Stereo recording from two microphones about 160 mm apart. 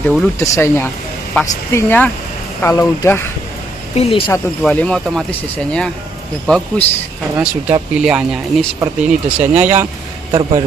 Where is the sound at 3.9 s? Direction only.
35° left (ahead or behind).